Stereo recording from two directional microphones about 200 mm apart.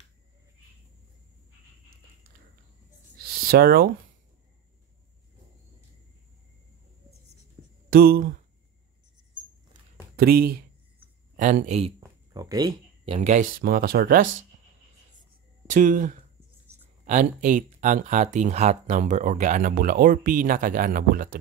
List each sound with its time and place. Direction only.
3.3 s a sound: 50° right (ahead or behind)
7.6 s a sound: 5° right (ahead or behind)
7.9 s speech: 50° right (ahead or behind)
10.1 s speech: 50° right (ahead or behind)
12.3 s speech: 20° right (ahead or behind); by 14.3 s 45° right (ahead or behind)
15.6 s speech: 40° right (ahead or behind)
16.7 s writing: 15° right (ahead or behind)
17.0 s speech: 40° right (ahead or behind)